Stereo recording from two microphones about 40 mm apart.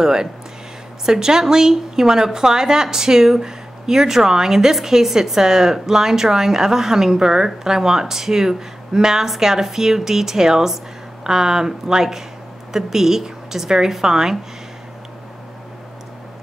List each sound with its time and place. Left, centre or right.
0.0 s a woman's voice: centre